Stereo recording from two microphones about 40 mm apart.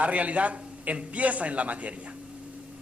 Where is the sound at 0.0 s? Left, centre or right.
Right.